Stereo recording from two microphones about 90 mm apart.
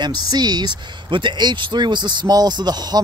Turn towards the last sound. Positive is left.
turn(degrees=-50)  # may be behind; listen again after turning